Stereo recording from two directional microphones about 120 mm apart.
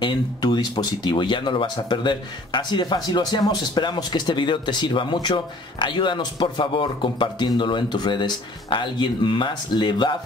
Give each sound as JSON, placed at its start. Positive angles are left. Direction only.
{"t": 0.0, "sound": "speech", "side_deg": 35}